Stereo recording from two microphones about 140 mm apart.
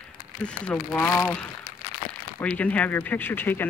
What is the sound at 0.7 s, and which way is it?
Speech, 15° left (ahead or behind).